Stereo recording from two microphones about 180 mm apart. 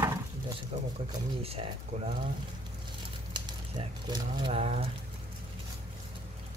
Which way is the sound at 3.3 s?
25° right (ahead or behind).